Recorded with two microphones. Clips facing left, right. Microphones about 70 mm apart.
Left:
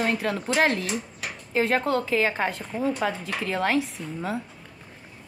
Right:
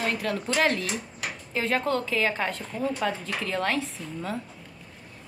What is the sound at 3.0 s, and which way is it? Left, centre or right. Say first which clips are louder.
Speech: left 1 dB; centre.